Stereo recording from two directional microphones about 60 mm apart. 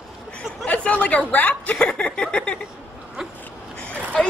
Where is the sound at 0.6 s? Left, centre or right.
Left.